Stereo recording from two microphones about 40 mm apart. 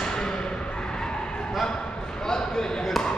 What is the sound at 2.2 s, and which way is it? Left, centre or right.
Basketball bounce, centre.